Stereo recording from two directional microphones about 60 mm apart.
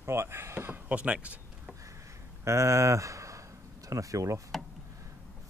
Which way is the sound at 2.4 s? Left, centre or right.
Right.